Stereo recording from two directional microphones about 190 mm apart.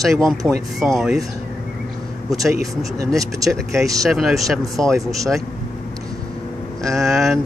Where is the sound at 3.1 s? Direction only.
15° right (ahead or behind).